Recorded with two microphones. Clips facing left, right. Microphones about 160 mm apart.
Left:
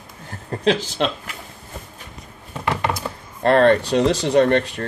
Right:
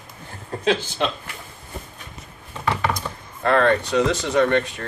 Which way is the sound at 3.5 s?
30° left (ahead or behind).